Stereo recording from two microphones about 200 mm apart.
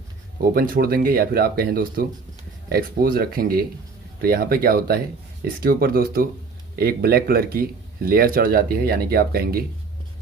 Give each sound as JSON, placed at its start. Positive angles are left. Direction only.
{"t": 0.4, "sound": "a man's voice", "side_deg": -45}